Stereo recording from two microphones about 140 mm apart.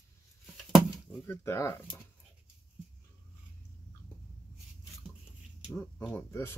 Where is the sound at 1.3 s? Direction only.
15° left (ahead or behind).